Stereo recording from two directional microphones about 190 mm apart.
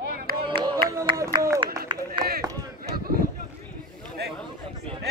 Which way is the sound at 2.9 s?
50° right (ahead or behind).